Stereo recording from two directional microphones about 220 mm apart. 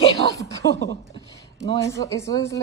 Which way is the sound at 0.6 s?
40° left (ahead or behind).